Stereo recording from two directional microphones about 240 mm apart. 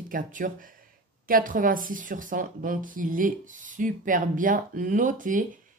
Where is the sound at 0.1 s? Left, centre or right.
Right.